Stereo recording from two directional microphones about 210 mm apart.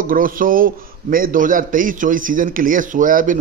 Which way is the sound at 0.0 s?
40° right (ahead or behind).